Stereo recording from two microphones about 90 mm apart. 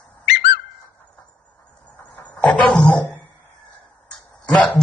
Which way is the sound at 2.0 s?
15° left (ahead or behind).